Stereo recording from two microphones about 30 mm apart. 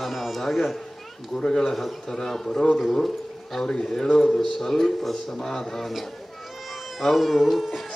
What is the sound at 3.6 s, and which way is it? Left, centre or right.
A man's voice, left.